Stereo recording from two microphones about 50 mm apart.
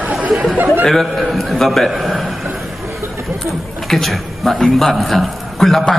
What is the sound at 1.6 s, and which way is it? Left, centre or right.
Speech, centre.